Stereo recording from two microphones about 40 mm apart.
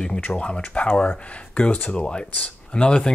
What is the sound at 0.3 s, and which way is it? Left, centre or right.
Speech, left.